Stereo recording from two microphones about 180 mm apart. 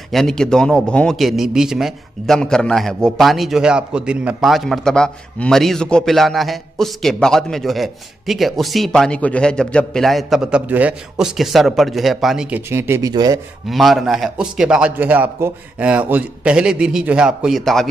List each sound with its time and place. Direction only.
0.1 s a man's voice: centre (ahead or behind); by 13.4 s 20° right (ahead or behind)
13.7 s a man's voice: centre (ahead or behind)